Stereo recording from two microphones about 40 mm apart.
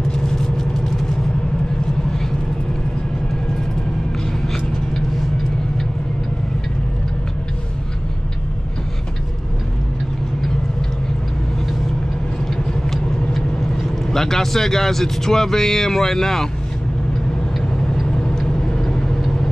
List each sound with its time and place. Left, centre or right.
0.1 s vehicle: centre
14.0 s speech: centre
18.4 s vehicle: centre